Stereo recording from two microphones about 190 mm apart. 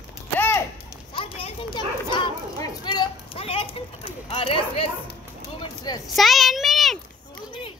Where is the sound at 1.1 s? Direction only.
25° left (ahead or behind).